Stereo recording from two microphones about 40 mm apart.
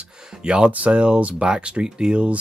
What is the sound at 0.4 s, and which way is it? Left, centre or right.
Speech, right.